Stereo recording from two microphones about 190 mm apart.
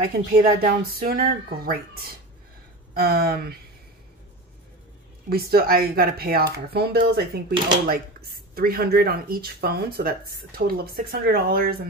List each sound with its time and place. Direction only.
0.0 s speech: 50° right (ahead or behind)
5.3 s speech: 55° right (ahead or behind)